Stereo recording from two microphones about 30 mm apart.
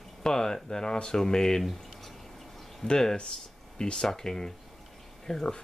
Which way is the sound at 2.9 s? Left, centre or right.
Left.